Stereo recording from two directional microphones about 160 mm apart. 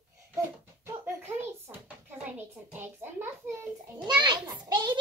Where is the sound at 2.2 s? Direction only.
10° right (ahead or behind).